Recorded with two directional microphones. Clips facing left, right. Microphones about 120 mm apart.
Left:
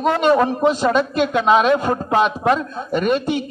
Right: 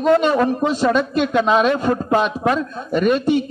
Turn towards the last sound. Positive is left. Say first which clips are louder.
# right 2 dB
turn(degrees=0)  # may be behind; listen again after turning